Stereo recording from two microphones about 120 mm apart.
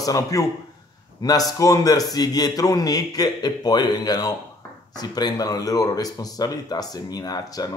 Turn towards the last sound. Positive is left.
turn(degrees=30)  # may be behind; listen again after turning